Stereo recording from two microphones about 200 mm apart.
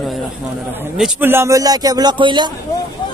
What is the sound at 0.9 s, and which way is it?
A man's voice, 5° right (ahead or behind).